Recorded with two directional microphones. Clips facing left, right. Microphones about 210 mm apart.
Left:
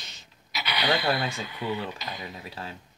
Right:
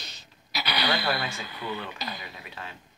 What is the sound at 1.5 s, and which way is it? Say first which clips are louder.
Speech: left 4 dB; 35° right (ahead or behind).